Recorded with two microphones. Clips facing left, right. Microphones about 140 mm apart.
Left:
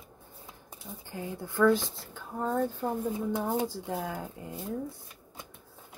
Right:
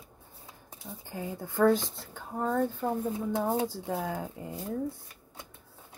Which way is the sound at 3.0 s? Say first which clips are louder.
Right 1 dB; 40° right (ahead or behind).